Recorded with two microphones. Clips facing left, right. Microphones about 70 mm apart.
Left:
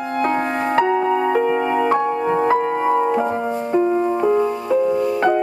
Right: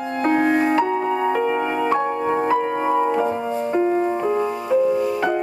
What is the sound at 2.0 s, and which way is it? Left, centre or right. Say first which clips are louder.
Music: left 2 dB; right.